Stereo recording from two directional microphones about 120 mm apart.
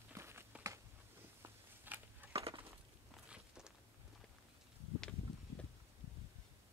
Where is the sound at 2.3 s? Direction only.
55° right (ahead or behind).